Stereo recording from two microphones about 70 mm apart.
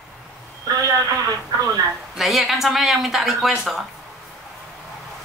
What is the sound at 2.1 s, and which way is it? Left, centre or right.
A woman's voice, centre.